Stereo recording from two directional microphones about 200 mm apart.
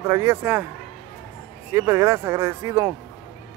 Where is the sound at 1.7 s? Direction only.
15° right (ahead or behind).